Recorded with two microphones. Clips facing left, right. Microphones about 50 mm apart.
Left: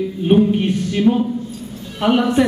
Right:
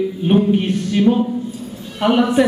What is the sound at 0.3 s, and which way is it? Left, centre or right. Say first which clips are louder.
A man's voice: left 1 dB; centre.